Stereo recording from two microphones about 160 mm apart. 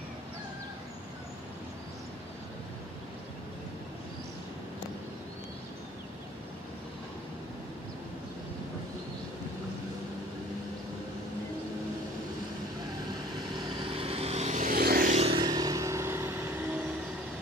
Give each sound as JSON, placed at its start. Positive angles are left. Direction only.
{"t": 13.5, "sound": "vehicle", "side_deg": -30}
{"t": 15.1, "sound": "a sound", "side_deg": -40}
{"t": 15.4, "sound": "vehicle", "side_deg": -25}